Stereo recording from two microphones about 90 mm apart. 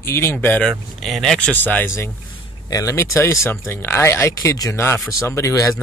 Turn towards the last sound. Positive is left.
turn(degrees=40)  # may be behind; listen again after turning